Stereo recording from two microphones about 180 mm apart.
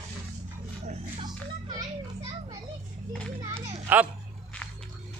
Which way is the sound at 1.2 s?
25° right (ahead or behind).